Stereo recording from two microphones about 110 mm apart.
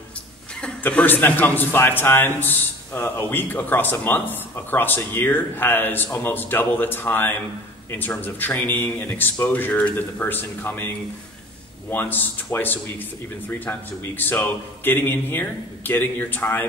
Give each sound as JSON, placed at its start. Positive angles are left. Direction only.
{"t": 0.6, "sound": "a man's voice", "side_deg": 10}